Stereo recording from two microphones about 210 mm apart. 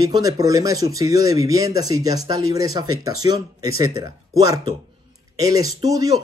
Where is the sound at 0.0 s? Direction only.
15° right (ahead or behind).